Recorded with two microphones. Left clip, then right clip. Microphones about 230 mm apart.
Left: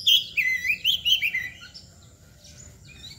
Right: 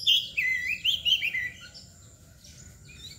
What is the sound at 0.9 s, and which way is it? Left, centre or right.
Bird, left.